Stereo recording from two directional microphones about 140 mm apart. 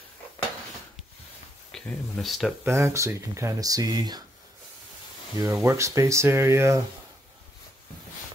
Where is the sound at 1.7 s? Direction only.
Centre (ahead or behind).